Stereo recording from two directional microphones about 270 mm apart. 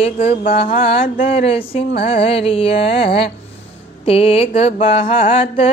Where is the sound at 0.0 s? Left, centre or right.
Left.